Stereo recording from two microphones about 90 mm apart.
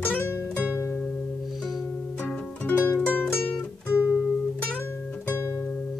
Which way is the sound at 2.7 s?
20° left (ahead or behind).